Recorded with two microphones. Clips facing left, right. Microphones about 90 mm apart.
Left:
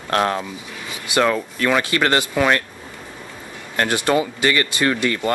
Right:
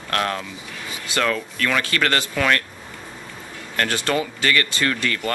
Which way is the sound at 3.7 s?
20° left (ahead or behind).